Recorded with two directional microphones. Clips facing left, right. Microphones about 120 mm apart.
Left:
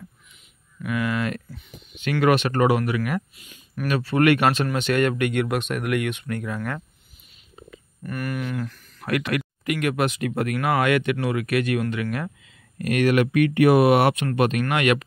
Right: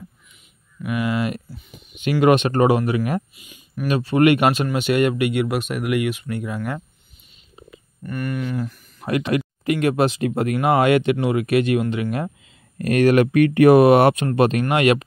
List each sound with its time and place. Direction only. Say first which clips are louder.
0.8 s speech: right 2 dB; 15° right (ahead or behind)
3.3 s speech: right 2 dB; 5° right (ahead or behind)
3.8 s speech: right 3 dB; 20° right (ahead or behind)
8.0 s speech: right 3 dB; 5° left (ahead or behind)
8.5 s speech: right 3 dB; 10° right (ahead or behind)
9.0 s speech: right 3 dB; 25° right (ahead or behind)
12.7 s speech: right 4 dB; 35° right (ahead or behind)